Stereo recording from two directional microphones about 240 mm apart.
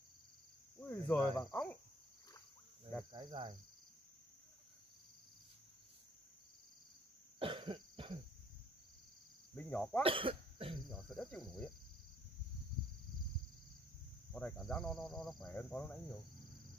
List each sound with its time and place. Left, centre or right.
0.7 s cricket: centre
1.5 s speech: centre
3.1 s speech: centre
7.3 s cough: right
9.6 s cricket: centre
10.0 s speech: right
10.9 s speech: centre
14.3 s speech: centre